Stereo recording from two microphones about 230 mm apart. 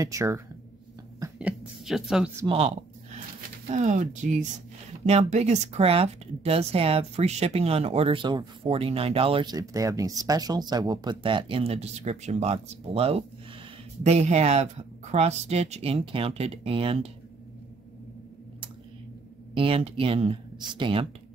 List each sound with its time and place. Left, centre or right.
0.0 s speech: centre
2.4 s speech: right
19.5 s speech: right